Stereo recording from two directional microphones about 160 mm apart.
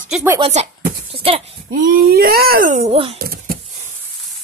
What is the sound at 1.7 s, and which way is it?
Speech, 65° right (ahead or behind).